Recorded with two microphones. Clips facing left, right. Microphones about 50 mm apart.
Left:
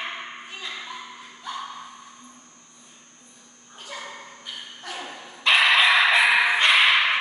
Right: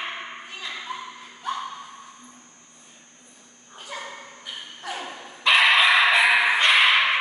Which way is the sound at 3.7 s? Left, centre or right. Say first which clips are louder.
Right 1 dB; centre.